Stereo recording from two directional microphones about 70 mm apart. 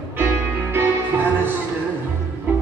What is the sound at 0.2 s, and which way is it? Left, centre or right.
Music, right.